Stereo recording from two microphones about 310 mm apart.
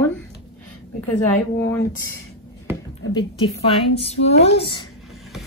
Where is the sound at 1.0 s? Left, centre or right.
Centre.